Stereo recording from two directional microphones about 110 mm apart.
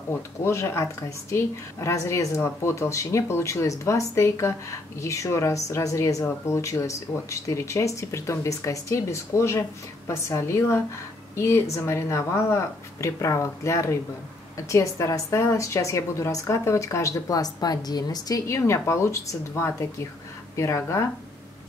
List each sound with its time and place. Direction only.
0.4 s speech: 25° left (ahead or behind)